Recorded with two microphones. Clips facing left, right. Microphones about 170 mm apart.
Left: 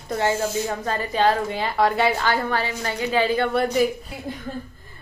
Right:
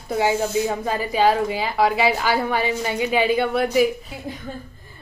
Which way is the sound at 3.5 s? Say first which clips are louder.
Right 2 dB; 5° right (ahead or behind).